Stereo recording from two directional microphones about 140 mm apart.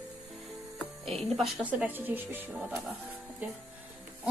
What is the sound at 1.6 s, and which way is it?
Speech, 10° right (ahead or behind).